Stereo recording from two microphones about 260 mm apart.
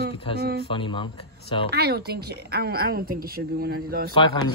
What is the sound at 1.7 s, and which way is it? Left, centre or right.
A woman's voice, right.